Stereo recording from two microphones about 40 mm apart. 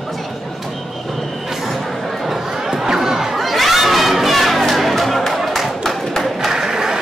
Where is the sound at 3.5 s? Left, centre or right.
Centre.